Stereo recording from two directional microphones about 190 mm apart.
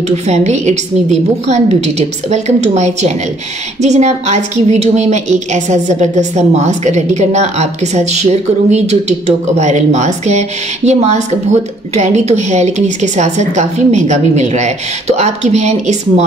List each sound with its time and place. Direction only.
0.1 s a woman's voice: 35° right (ahead or behind)